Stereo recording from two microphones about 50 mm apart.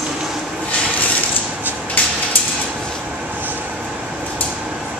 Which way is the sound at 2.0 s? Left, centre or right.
Left.